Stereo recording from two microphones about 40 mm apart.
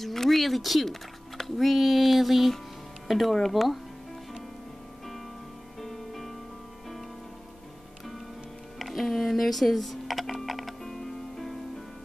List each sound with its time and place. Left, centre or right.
0.0 s speech: centre
5.8 s music: centre
8.7 s computer keyboard: centre
10.9 s music: centre